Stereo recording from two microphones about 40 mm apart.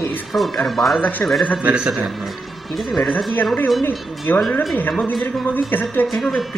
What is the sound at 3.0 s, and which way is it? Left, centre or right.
Speech, left.